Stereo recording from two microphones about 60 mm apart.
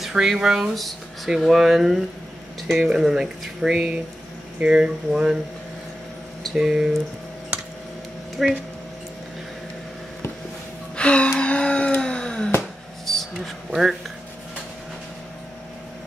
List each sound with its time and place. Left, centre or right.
0.0 s speech: centre
0.7 s speech: centre
6.6 s speech: centre
8.4 s speech: centre
11.0 s gasp: centre
13.0 s a sound: centre
13.7 s speech: centre